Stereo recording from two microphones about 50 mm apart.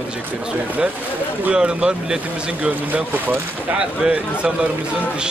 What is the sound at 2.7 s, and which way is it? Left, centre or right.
Speech, right.